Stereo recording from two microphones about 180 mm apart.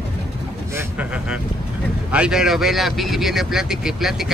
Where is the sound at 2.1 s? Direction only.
5° right (ahead or behind).